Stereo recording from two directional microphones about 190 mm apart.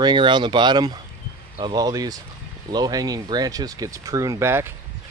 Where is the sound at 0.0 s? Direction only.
25° right (ahead or behind).